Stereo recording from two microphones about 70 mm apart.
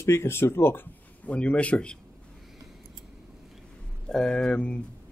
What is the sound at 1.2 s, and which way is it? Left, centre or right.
Speech, centre.